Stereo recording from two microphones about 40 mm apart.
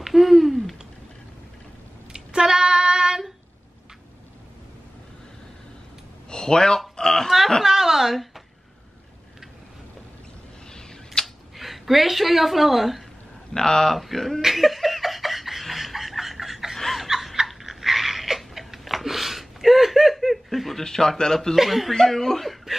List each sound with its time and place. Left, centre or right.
0.0 s hoot: centre
2.1 s child singing: centre
6.3 s a sound: centre
7.2 s a sound: centre
10.7 s tick-tock: centre
11.5 s a woman's voice: centre
13.5 s a man's voice: centre
13.9 s speech: centre
14.4 s laughter: centre
20.8 s a man's voice: centre
21.5 s speech: centre